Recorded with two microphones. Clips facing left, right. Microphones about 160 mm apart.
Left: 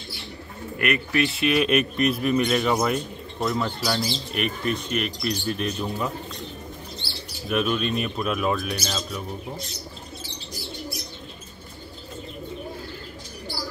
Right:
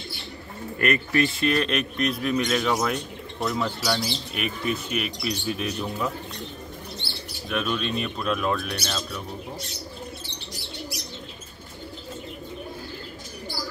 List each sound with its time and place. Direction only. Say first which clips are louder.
0.7 s speech: right 1 dB; 5° left (ahead or behind)
7.4 s speech: left 3 dB; 5° left (ahead or behind)
10.2 s bird: left 2 dB; 65° right (ahead or behind)